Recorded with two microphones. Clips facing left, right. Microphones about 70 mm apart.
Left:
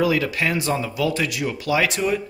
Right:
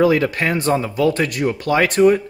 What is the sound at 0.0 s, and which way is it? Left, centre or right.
Speech, right.